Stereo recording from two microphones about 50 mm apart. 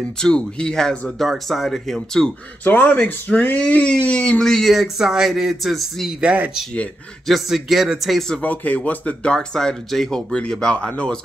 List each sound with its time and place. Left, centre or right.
0.2 s speech: centre
2.6 s speech: left
4.6 s speech: centre
7.2 s speech: centre
8.4 s speech: left
9.3 s speech: centre
10.3 s speech: centre